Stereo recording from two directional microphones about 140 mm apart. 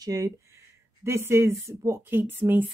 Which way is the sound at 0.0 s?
25° right (ahead or behind).